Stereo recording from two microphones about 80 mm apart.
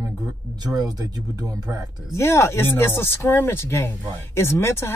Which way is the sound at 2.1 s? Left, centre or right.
Left.